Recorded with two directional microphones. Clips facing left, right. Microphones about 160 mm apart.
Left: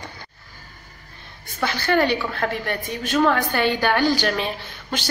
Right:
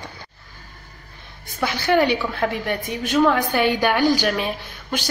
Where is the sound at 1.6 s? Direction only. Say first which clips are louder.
Right 2 dB; 10° right (ahead or behind).